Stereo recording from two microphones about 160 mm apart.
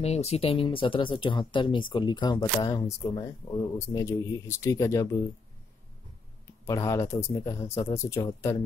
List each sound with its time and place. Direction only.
0.0 s speech: 40° left (ahead or behind); by 5.0 s 20° left (ahead or behind)
6.6 s speech: 20° left (ahead or behind)